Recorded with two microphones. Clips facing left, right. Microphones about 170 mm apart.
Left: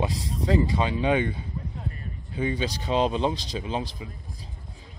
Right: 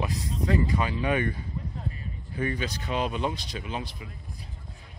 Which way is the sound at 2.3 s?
25° left (ahead or behind).